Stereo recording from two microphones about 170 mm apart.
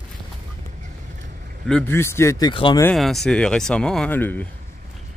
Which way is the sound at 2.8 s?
5° left (ahead or behind).